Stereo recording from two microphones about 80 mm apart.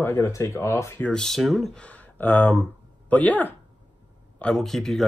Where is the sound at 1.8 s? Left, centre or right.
Centre.